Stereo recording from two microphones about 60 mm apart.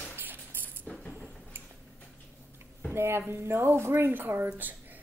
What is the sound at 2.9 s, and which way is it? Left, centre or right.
Speech, right.